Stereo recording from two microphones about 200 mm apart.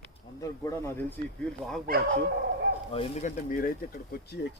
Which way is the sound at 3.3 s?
45° left (ahead or behind).